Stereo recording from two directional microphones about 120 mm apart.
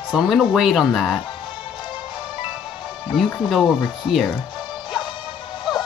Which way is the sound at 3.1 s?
Centre (ahead or behind).